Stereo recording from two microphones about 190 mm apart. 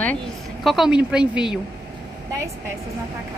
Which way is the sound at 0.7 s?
5° right (ahead or behind).